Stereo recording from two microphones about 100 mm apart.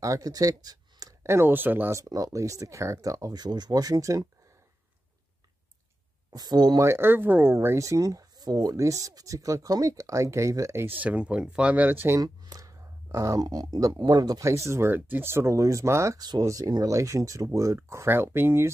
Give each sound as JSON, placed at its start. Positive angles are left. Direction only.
{"t": 0.0, "sound": "speech", "side_deg": -35}
{"t": 1.2, "sound": "speech", "side_deg": -25}
{"t": 2.0, "sound": "speech", "side_deg": -35}
{"t": 6.3, "sound": "speech", "side_deg": -45}
{"t": 6.8, "sound": "speech", "side_deg": -25}
{"t": 7.5, "sound": "speech", "side_deg": -30}
{"t": 12.2, "sound": "speech", "side_deg": -35}